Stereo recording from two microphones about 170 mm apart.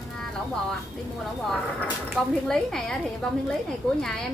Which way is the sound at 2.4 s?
5° left (ahead or behind).